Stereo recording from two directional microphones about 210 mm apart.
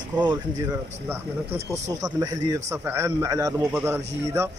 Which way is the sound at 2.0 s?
15° right (ahead or behind).